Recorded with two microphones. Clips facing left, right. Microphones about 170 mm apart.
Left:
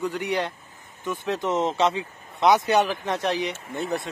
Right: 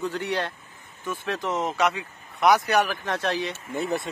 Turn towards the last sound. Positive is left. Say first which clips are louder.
# right 1 dB
turn(degrees=0)  # may be behind; listen again after turning